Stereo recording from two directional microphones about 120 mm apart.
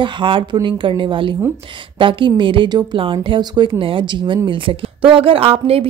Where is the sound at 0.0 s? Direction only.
45° right (ahead or behind).